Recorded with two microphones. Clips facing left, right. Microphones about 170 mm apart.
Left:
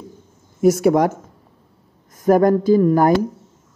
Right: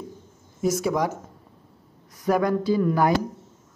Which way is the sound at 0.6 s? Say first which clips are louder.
Left 9 dB; 60° left (ahead or behind).